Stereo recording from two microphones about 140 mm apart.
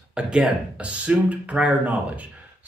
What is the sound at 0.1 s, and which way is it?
A man's voice, 5° right (ahead or behind).